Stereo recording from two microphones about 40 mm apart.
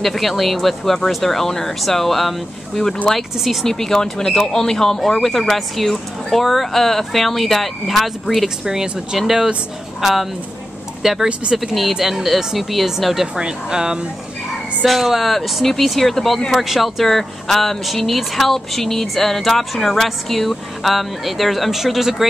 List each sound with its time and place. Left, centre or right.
0.0 s speech: centre
8.6 s speech: centre
10.0 s speech: centre
13.4 s speech: centre
14.9 s speech: centre